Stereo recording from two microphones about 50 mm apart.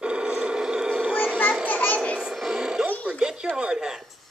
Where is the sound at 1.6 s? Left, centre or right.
Left.